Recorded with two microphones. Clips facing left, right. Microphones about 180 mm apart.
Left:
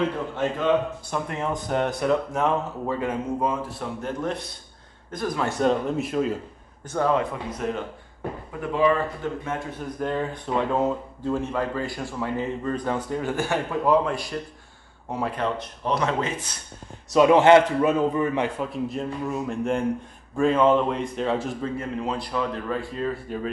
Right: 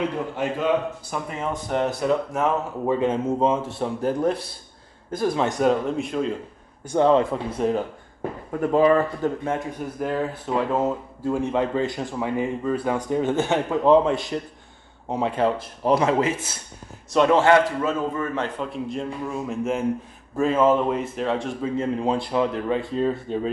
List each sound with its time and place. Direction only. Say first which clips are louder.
0.4 s speech: left 1 dB; 10° right (ahead or behind)
2.9 s a man's voice: right 5 dB; 25° right (ahead or behind)
5.6 s speech: left 1 dB; centre (ahead or behind)
7.0 s a man's voice: right 5 dB; 30° right (ahead or behind)
8.5 s speech: right 4 dB; 45° right (ahead or behind)
9.7 s speech: right 1 dB; 10° right (ahead or behind)
11.5 s a man's voice: right 4 dB; 20° right (ahead or behind)
17.3 s a man's voice: left 3 dB; 20° left (ahead or behind)
18.6 s speech: even; centre (ahead or behind)
21.7 s a man's voice: right 5 dB; 25° right (ahead or behind)